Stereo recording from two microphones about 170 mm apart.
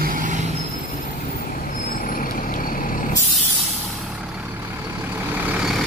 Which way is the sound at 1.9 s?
55° left (ahead or behind).